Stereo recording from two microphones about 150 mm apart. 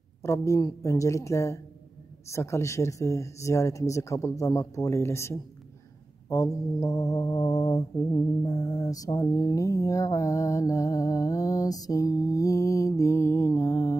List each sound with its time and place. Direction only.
0.2 s mantra: 20° left (ahead or behind)